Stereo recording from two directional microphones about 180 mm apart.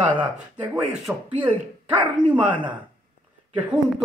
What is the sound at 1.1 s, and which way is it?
Speech, 5° right (ahead or behind).